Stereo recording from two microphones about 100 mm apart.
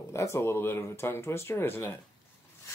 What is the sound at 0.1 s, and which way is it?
Speech, 25° left (ahead or behind).